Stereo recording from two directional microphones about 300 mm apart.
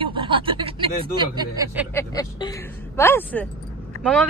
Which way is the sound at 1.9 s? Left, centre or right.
Centre.